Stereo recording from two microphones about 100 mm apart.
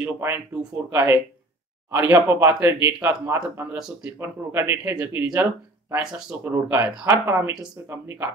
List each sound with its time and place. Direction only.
0.0 s speech: 20° right (ahead or behind)
3.7 s speech: 5° right (ahead or behind)
4.2 s speech: 25° right (ahead or behind)
4.9 s speech: 15° right (ahead or behind)